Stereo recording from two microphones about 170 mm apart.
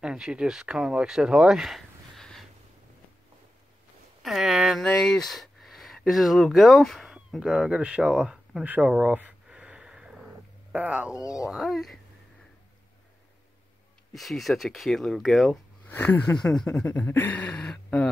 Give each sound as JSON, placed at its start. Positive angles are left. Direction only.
{"t": 0.0, "sound": "speech", "side_deg": -5}
{"t": 4.2, "sound": "speech", "side_deg": 0}
{"t": 11.1, "sound": "speech", "side_deg": 20}
{"t": 11.4, "sound": "speech", "side_deg": 0}
{"t": 14.1, "sound": "speech", "side_deg": 0}
{"t": 15.9, "sound": "a sound", "side_deg": 10}